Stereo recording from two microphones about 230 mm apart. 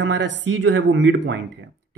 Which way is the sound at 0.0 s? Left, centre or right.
Right.